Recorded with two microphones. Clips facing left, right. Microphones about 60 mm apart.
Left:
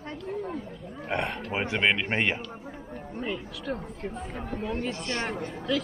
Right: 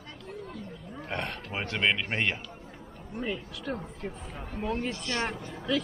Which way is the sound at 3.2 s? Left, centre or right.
Centre.